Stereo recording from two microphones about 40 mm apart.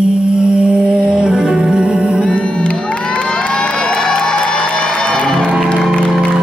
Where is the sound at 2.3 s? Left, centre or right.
Left.